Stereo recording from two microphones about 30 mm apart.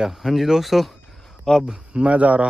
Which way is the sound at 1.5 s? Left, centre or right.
Centre.